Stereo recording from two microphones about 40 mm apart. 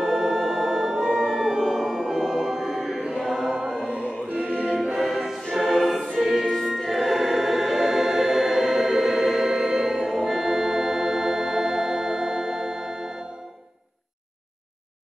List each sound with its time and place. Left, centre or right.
0.0 s music: centre
3.1 s chant: centre
3.5 s choir: centre
4.5 s choir: right
4.9 s choir: centre
6.1 s music: centre
6.5 s choir: centre
9.8 s organ: centre